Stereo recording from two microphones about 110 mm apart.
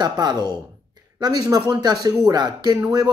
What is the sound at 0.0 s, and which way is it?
Speech, 40° right (ahead or behind).